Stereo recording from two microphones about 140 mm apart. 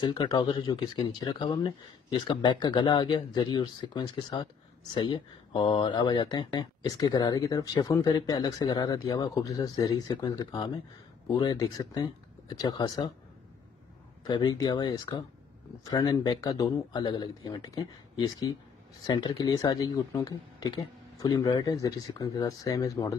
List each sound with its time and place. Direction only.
0.0 s speech: 30° left (ahead or behind)
14.2 s speech: 30° left (ahead or behind)